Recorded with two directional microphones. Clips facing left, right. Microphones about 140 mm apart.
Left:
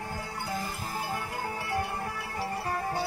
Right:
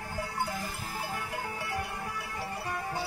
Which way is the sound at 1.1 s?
35° left (ahead or behind).